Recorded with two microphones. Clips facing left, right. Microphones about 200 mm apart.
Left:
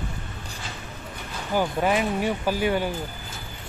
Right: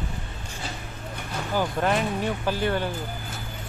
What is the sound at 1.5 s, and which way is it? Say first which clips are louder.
Speech: left 2 dB; 10° left (ahead or behind).